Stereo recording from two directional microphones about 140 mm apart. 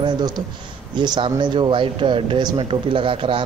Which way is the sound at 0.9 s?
30° right (ahead or behind).